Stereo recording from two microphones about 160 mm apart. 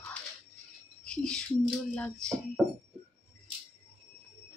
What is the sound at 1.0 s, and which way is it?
A woman's voice, 5° left (ahead or behind).